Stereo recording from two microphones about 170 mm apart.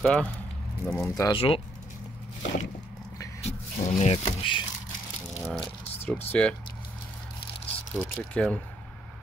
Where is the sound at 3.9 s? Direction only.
40° left (ahead or behind).